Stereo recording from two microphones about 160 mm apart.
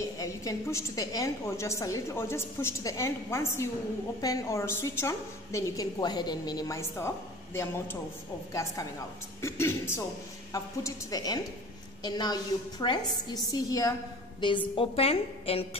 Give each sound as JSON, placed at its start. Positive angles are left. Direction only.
{"t": 0.2, "sound": "a woman's voice", "side_deg": 20}
{"t": 9.4, "sound": "a woman's voice", "side_deg": 15}